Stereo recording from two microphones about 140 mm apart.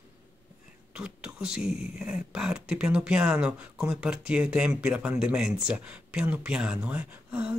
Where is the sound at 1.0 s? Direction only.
5° right (ahead or behind).